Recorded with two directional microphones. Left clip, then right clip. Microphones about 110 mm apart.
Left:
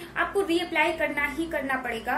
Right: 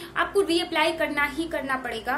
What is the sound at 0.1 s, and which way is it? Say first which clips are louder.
A woman's voice: right 2 dB; 25° right (ahead or behind).